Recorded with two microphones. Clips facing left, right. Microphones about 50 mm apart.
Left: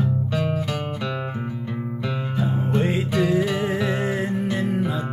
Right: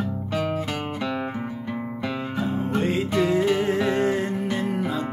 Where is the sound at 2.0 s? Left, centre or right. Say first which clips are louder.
Even; centre.